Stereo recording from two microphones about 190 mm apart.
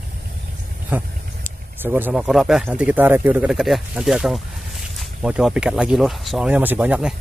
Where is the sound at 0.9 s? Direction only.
10° right (ahead or behind).